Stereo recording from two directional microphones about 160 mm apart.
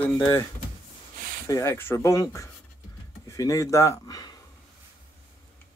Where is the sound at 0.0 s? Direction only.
10° left (ahead or behind).